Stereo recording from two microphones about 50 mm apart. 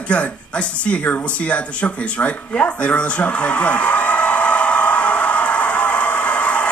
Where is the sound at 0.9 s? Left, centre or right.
Left.